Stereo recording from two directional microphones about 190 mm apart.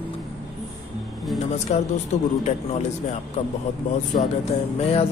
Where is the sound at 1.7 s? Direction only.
35° left (ahead or behind).